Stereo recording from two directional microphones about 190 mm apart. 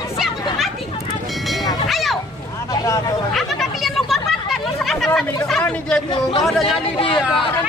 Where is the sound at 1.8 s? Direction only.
Centre (ahead or behind).